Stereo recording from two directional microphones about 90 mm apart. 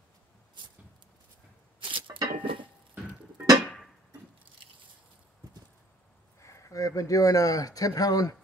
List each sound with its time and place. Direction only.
1.8 s a sound: 70° right (ahead or behind)
3.6 s music: 5° left (ahead or behind)
6.4 s speech: 35° left (ahead or behind)